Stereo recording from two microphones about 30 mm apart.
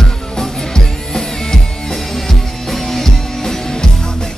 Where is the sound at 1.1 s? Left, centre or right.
Centre.